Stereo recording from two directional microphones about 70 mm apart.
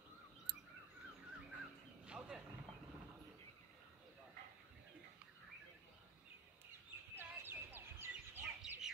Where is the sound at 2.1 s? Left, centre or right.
Centre.